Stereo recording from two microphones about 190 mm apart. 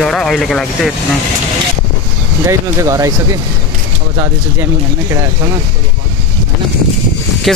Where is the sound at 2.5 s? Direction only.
15° right (ahead or behind).